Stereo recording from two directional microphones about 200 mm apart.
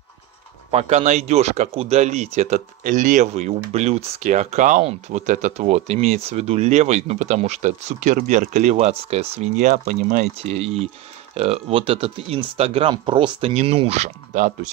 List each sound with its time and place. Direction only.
0.7 s speech: 30° right (ahead or behind)